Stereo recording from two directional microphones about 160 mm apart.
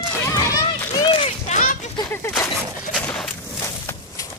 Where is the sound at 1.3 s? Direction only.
50° left (ahead or behind).